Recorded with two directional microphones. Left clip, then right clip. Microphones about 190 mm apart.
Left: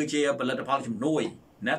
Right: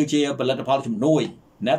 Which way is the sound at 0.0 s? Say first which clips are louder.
Right 4 dB; 15° right (ahead or behind).